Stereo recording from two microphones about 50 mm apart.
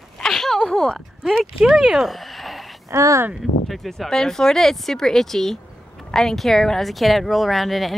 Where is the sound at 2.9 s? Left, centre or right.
Right.